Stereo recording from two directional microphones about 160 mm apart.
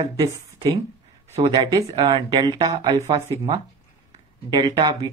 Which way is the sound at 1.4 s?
30° right (ahead or behind).